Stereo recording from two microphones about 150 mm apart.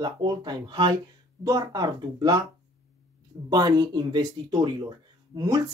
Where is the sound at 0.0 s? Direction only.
30° right (ahead or behind).